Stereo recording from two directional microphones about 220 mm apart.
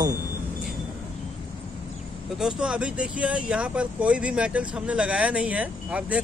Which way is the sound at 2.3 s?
5° right (ahead or behind).